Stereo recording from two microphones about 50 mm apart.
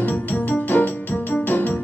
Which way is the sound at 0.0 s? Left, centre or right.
Left.